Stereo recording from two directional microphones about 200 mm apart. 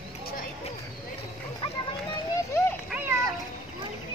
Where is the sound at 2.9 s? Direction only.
10° right (ahead or behind).